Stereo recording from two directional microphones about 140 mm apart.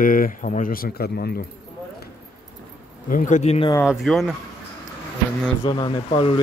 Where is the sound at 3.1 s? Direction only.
65° left (ahead or behind).